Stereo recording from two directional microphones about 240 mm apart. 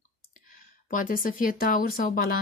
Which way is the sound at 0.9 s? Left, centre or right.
Left.